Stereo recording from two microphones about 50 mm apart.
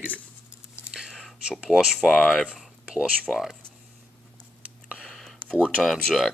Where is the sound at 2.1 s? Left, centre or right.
Centre.